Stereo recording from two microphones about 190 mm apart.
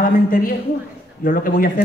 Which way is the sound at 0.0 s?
50° left (ahead or behind).